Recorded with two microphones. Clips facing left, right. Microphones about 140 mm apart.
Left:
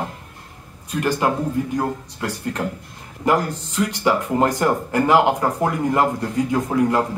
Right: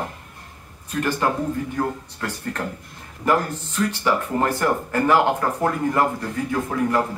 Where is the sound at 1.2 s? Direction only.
15° left (ahead or behind).